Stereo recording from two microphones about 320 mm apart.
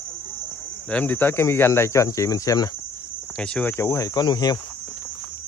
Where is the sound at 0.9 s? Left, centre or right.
Centre.